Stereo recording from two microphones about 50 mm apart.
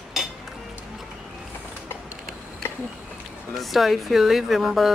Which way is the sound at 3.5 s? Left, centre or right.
Centre.